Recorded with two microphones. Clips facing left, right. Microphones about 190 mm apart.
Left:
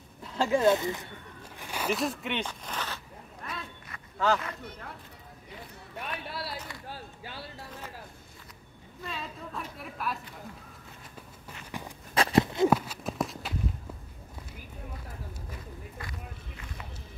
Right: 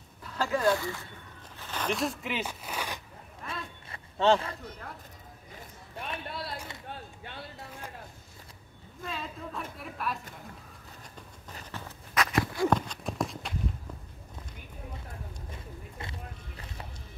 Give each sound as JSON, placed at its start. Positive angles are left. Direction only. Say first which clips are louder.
{"t": 0.2, "sound": "speech", "louder": "left 3 dB", "side_deg": 20}
{"t": 1.6, "sound": "speech", "louder": "left 1 dB", "side_deg": 10}
{"t": 3.4, "sound": "a sound", "louder": "right 1 dB", "side_deg": -25}
{"t": 5.9, "sound": "speech", "louder": "even", "side_deg": 5}
{"t": 9.0, "sound": "speech", "louder": "right 1 dB", "side_deg": 0}
{"t": 11.7, "sound": "walk", "louder": "left 3 dB", "side_deg": 15}
{"t": 12.1, "sound": "walk", "louder": "left 4 dB", "side_deg": 30}
{"t": 12.6, "sound": "horse", "louder": "left 2 dB", "side_deg": 5}
{"t": 16.0, "sound": "vehicle", "louder": "even", "side_deg": -25}